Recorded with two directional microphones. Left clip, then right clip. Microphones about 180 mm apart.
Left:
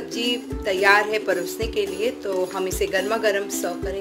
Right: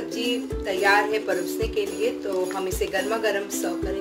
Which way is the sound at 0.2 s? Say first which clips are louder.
Left 3 dB; 50° left (ahead or behind).